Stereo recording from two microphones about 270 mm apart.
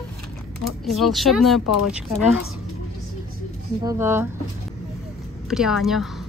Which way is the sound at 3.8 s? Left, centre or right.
Centre.